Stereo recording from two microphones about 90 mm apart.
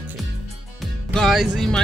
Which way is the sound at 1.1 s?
5° left (ahead or behind).